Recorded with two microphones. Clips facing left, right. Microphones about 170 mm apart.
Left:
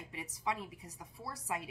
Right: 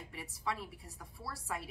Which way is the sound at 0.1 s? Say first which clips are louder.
Left 2 dB; 15° left (ahead or behind).